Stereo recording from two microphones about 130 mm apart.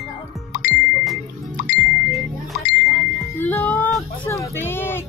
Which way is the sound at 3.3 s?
15° left (ahead or behind).